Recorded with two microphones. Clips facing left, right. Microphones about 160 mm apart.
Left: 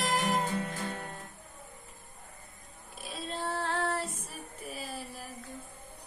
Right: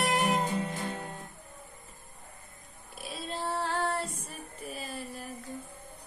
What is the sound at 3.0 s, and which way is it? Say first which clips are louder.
Female singing: right 1 dB; centre (ahead or behind).